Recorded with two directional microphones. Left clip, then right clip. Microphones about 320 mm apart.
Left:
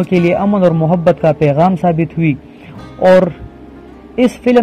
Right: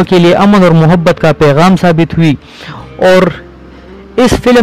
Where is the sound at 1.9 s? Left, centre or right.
Right.